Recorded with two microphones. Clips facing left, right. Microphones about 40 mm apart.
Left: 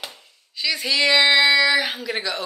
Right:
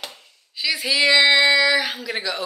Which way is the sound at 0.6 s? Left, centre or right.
Centre.